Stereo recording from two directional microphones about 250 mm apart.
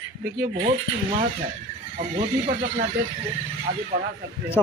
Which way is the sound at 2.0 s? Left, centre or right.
Right.